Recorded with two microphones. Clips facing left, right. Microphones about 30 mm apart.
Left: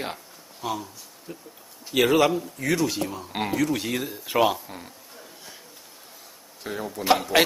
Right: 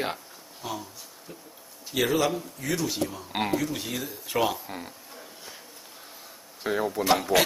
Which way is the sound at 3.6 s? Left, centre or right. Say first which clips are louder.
Left 6 dB; left.